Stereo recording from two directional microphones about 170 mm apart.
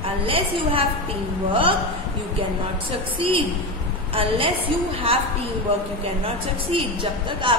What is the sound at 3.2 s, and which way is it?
A woman's voice, 30° right (ahead or behind).